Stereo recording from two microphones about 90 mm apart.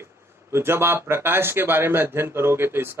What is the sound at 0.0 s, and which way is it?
A man's voice, 25° right (ahead or behind).